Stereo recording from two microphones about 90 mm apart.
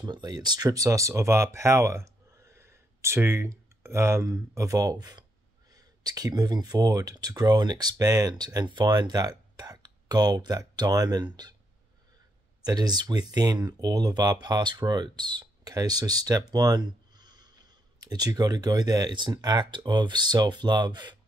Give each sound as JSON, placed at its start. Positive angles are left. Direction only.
{"t": 0.0, "sound": "speech", "side_deg": -50}
{"t": 12.6, "sound": "speech", "side_deg": -50}